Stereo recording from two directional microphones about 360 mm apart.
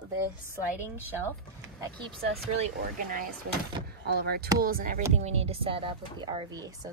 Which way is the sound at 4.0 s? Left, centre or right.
Right.